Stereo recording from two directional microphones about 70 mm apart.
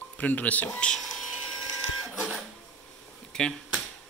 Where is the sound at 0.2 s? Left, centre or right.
Left.